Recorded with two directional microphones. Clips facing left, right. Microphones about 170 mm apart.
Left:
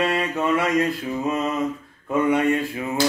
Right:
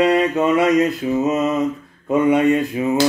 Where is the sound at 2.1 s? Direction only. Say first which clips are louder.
Right 5 dB; 20° right (ahead or behind).